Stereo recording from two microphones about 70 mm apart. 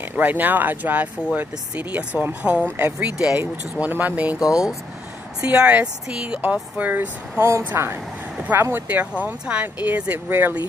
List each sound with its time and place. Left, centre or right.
0.1 s speech: right
3.9 s speech: right
4.4 s speech: centre; by 7.4 s right
7.4 s a woman's voice: right
8.7 s speech: right